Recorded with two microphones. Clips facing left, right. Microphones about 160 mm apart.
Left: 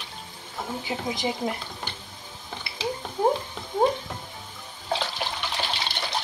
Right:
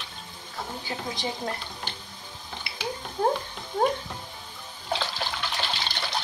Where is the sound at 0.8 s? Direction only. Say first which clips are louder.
Left 4 dB; 15° left (ahead or behind).